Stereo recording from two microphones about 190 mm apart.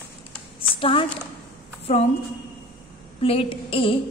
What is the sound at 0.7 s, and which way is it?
Speech, 30° left (ahead or behind).